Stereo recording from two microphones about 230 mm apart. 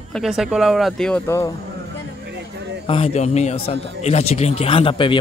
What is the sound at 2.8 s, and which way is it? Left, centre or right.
A man's voice, left.